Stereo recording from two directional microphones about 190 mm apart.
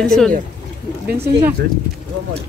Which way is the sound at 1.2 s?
15° right (ahead or behind).